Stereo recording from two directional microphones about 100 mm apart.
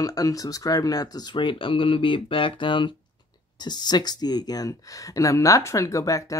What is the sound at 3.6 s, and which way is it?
Speech, 45° left (ahead or behind).